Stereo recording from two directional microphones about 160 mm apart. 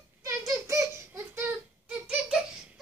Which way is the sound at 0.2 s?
20° right (ahead or behind).